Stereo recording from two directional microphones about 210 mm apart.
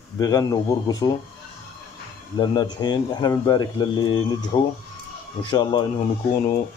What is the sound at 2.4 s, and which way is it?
A man's voice, 20° left (ahead or behind).